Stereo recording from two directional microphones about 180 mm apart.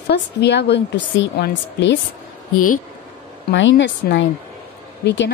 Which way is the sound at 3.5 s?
90° left.